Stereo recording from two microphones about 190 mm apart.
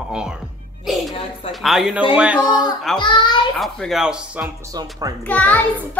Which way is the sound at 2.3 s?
20° left (ahead or behind).